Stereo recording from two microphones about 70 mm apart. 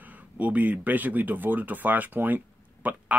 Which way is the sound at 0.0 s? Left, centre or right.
Right.